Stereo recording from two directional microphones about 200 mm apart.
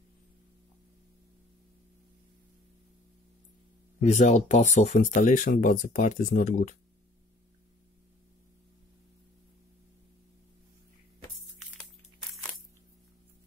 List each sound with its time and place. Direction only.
4.0 s speech: 35° left (ahead or behind)